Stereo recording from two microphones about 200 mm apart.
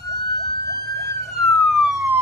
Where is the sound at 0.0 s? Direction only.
55° right (ahead or behind).